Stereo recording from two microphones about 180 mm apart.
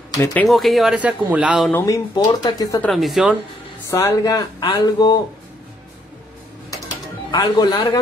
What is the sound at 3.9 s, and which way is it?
A man's voice, 15° left (ahead or behind).